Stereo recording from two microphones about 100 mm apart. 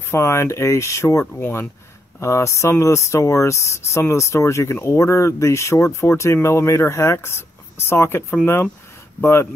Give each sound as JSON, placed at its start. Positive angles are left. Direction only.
{"t": 0.1, "sound": "speech", "side_deg": 25}
{"t": 1.2, "sound": "speech", "side_deg": 15}
{"t": 2.1, "sound": "speech", "side_deg": 30}